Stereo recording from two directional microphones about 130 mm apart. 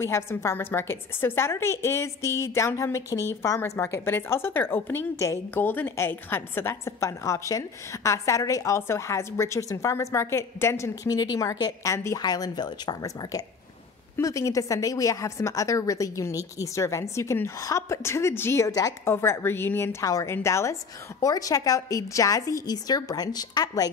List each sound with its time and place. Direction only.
0.0 s a woman's voice: 20° left (ahead or behind)